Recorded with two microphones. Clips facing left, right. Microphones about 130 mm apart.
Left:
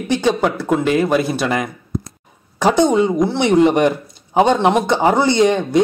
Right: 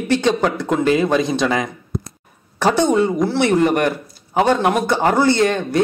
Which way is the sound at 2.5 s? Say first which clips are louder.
Left 2 dB; 15° left (ahead or behind).